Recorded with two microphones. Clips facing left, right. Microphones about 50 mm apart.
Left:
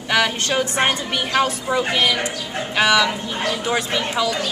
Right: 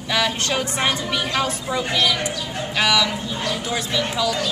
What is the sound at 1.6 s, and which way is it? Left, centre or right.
A woman's voice, left.